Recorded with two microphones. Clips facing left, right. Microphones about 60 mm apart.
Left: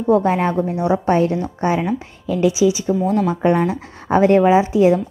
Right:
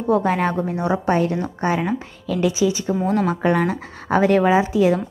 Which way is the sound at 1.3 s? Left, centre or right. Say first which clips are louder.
Left 2 dB; right.